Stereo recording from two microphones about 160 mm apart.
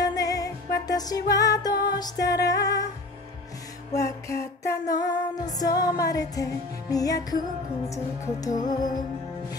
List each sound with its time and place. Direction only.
0.0 s music: 25° left (ahead or behind)
3.9 s music: 20° left (ahead or behind)